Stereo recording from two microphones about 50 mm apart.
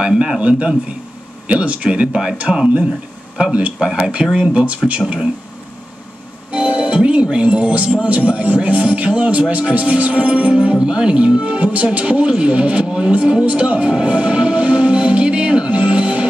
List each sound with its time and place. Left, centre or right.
0.2 s speech: right
6.5 s music: right
7.9 s speech: right
13.2 s music: centre